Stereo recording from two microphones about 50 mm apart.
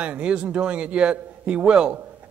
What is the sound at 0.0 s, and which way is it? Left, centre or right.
A man's voice, right.